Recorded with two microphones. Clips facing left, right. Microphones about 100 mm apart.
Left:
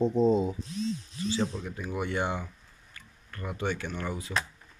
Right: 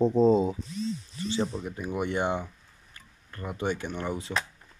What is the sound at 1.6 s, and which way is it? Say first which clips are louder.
Speech: right 2 dB; 15° right (ahead or behind).